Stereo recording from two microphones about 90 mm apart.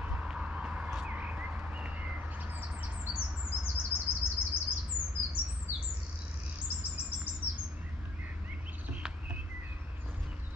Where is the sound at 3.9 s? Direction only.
90° left.